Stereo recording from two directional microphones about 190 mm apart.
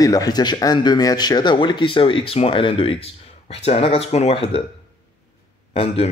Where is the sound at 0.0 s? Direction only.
20° left (ahead or behind).